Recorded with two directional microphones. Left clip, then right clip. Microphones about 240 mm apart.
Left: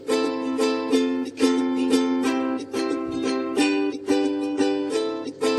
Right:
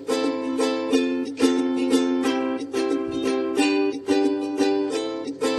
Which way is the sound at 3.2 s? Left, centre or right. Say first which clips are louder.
Even; left.